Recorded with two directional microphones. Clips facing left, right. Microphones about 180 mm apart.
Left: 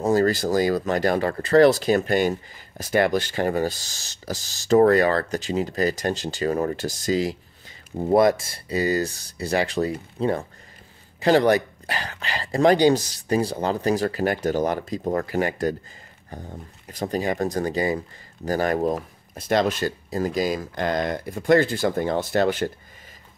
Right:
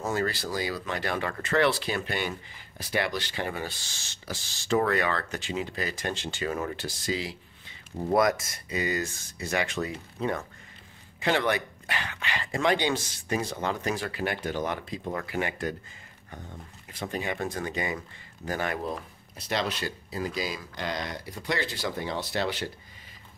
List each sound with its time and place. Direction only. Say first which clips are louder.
0.0 s speech: left 9 dB; 40° left (ahead or behind)
8.1 s speech: left 6 dB; 30° left (ahead or behind); by 22.7 s 50° left (ahead or behind)